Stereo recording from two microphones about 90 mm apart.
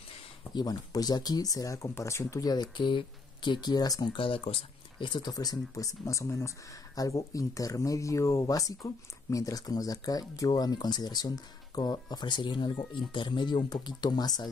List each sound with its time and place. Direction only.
0.4 s speech: 50° left (ahead or behind); by 2.4 s 30° left (ahead or behind)
2.4 s speech: 55° left (ahead or behind)
4.2 s speech: 85° left; by 5.3 s 60° left (ahead or behind)
5.3 s speech: 45° left (ahead or behind)